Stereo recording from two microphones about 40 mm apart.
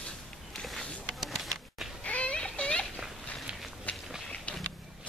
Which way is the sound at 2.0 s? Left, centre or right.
Left.